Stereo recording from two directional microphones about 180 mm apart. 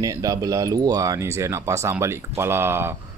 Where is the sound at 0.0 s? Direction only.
20° right (ahead or behind).